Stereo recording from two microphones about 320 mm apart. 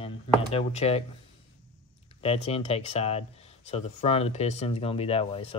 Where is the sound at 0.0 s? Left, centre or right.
Centre.